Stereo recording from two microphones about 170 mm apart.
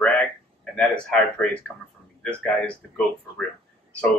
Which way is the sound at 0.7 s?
5° left (ahead or behind).